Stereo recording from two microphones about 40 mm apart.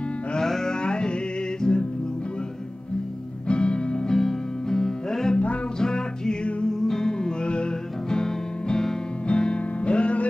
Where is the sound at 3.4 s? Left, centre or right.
Left.